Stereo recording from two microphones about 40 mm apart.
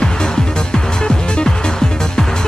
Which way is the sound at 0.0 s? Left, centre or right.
Centre.